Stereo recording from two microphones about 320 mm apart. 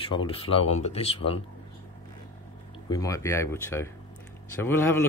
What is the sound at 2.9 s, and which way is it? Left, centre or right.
Speech, centre.